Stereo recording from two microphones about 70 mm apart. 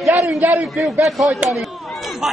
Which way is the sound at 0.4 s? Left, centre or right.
Right.